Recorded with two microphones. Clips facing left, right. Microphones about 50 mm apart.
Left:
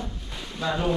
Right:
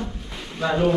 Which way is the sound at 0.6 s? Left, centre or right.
Right.